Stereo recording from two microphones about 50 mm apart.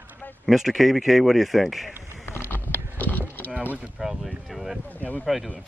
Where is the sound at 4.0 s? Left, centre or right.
Centre.